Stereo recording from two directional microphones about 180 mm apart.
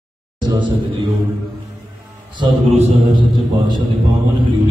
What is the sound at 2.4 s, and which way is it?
A man's voice, 25° right (ahead or behind).